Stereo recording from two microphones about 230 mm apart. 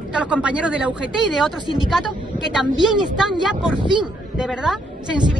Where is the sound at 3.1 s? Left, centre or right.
Centre.